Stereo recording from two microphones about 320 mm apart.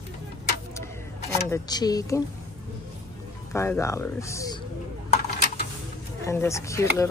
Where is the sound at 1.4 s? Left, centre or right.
Centre.